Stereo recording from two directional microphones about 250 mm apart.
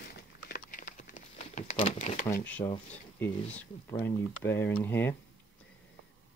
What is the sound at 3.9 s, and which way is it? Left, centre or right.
Speech, centre.